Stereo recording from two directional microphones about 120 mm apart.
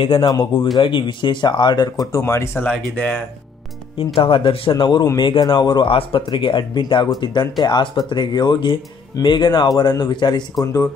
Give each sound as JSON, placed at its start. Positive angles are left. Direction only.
{"t": 0.0, "sound": "speech", "side_deg": 45}
{"t": 2.2, "sound": "speech", "side_deg": 20}
{"t": 4.0, "sound": "speech", "side_deg": 45}